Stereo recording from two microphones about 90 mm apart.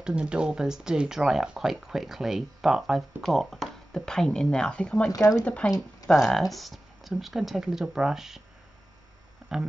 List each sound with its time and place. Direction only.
0.0 s speech: 10° right (ahead or behind); by 5.1 s 10° left (ahead or behind)
5.1 s speech: 45° left (ahead or behind)
5.4 s speech: 15° left (ahead or behind); by 8.4 s 5° right (ahead or behind)